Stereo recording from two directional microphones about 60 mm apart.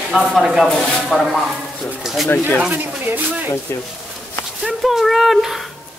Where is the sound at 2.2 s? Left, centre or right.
Left.